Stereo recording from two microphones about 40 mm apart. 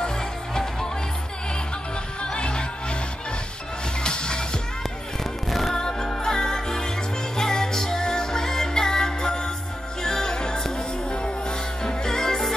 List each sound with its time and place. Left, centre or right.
2.3 s music: left
4.0 s music: left
5.5 s music: centre
5.8 s music: centre